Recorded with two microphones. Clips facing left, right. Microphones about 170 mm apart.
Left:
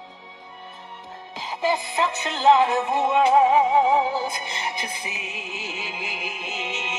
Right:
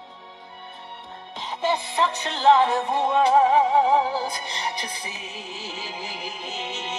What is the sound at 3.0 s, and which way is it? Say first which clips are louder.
Music: left 1 dB; 35° right (ahead or behind).